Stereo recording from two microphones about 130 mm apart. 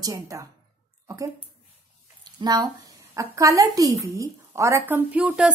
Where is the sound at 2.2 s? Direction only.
30° right (ahead or behind).